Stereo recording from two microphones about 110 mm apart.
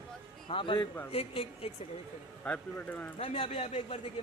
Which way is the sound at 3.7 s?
75° left (ahead or behind).